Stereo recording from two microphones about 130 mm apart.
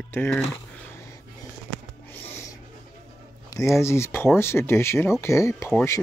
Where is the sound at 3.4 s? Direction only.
25° left (ahead or behind).